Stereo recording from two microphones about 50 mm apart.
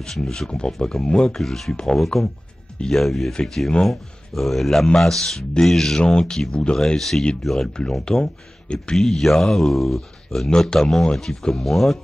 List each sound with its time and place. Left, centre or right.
0.2 s speech: centre
1.3 s speech: centre
1.7 s speech: centre
2.0 s speech: centre
6.8 s speech: centre